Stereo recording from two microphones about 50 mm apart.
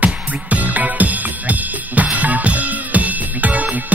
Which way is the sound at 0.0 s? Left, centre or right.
Right.